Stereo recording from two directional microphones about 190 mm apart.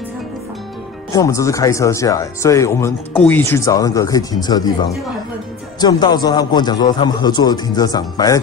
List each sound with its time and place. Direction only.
1.1 s speech: 15° left (ahead or behind)
5.8 s a man's voice: 20° left (ahead or behind)